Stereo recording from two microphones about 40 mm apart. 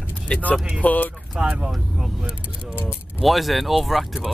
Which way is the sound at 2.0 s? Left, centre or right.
Centre.